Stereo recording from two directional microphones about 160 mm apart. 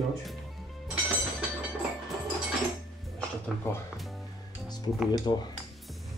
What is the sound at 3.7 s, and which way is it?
Speech, 15° left (ahead or behind).